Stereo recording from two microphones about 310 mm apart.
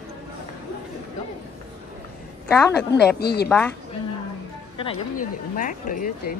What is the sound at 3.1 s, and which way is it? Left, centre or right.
Speech, left.